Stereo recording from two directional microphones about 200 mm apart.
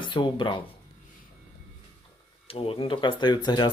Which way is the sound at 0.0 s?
25° left (ahead or behind).